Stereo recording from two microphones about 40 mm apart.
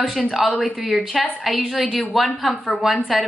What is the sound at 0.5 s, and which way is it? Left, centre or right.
Speech, left.